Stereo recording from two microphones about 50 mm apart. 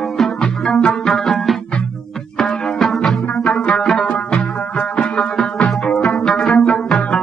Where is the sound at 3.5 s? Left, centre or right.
Centre.